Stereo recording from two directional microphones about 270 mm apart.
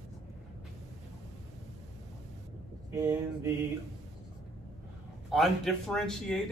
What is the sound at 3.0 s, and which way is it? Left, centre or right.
Mantra, centre.